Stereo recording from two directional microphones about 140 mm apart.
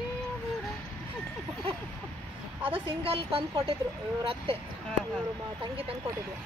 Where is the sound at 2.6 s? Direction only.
40° right (ahead or behind).